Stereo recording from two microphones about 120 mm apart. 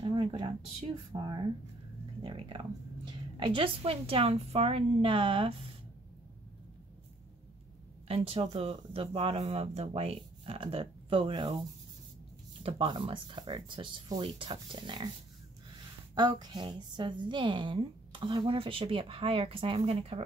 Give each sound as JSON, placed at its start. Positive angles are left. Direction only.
{"t": 0.0, "sound": "a woman's voice", "side_deg": -50}
{"t": 8.1, "sound": "a woman's voice", "side_deg": -55}
{"t": 12.6, "sound": "a woman's voice", "side_deg": -45}
{"t": 16.2, "sound": "a woman's voice", "side_deg": -35}